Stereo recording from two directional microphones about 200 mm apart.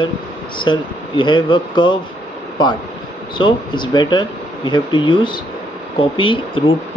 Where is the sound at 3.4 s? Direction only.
25° left (ahead or behind).